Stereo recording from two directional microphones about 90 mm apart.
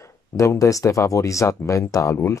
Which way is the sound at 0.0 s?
35° left (ahead or behind).